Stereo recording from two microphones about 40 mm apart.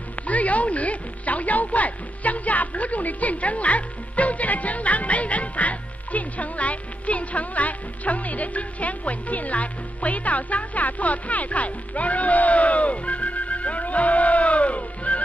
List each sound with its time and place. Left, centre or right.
0.1 s speech: left